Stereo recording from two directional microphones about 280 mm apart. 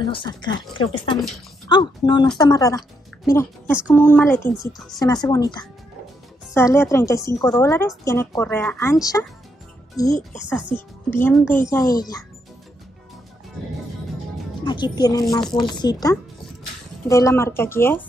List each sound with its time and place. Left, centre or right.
0.0 s a woman's voice: centre
5.2 s a woman's voice: centre
14.6 s a woman's voice: centre